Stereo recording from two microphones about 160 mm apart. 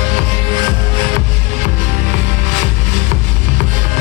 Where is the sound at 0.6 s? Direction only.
30° right (ahead or behind).